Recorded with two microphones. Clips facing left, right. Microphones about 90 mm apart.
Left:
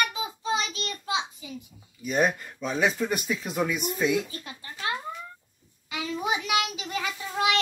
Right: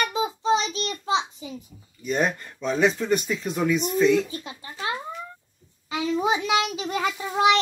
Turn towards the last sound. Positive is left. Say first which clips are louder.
# right 6 dB
turn(degrees=-25)  # may be behind; listen again after turning